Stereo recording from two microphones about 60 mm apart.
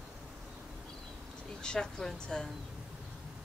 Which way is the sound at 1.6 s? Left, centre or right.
Centre.